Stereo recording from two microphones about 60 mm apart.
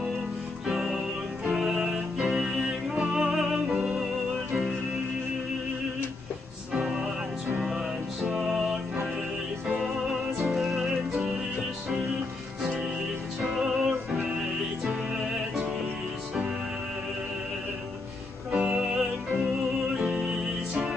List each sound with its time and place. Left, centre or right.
0.7 s music: centre
6.7 s music: centre
10.4 s music: centre
13.4 s music: centre
15.1 s music: centre
18.5 s music: centre